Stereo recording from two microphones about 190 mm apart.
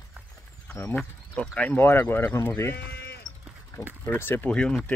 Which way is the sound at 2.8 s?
50° left (ahead or behind).